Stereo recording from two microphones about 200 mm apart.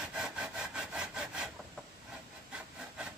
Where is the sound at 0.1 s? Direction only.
5° right (ahead or behind).